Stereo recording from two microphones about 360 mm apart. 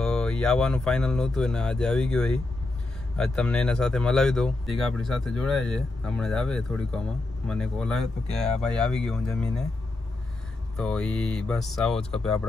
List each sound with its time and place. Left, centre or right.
0.0 s speech: centre
10.8 s speech: centre